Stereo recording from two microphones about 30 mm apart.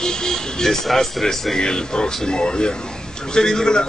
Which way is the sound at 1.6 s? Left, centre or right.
Left.